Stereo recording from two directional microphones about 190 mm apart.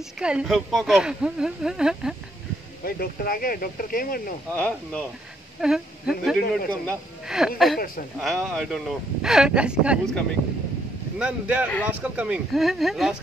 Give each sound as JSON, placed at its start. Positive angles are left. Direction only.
{"t": 0.2, "sound": "speech", "side_deg": -5}
{"t": 2.8, "sound": "speech", "side_deg": 50}
{"t": 4.6, "sound": "speech", "side_deg": 5}